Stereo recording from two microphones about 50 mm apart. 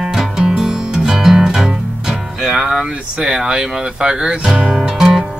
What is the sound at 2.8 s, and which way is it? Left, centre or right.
Speech, centre.